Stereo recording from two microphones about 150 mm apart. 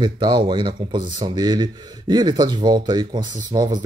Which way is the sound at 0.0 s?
30° right (ahead or behind).